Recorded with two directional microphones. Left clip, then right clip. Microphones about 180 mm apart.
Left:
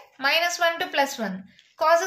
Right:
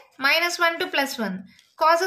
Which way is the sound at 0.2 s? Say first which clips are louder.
Right 1 dB; 30° right (ahead or behind).